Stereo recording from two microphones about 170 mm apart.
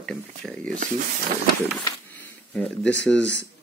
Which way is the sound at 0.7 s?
50° right (ahead or behind).